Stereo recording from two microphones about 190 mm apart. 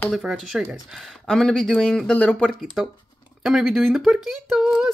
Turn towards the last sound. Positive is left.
turn(degrees=-5)  # may be behind; listen again after turning